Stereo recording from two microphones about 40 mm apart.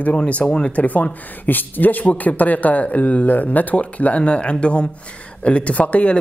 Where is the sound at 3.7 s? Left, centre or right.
Left.